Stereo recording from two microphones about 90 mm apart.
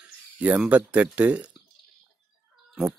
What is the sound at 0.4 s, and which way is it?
Speech, 15° right (ahead or behind).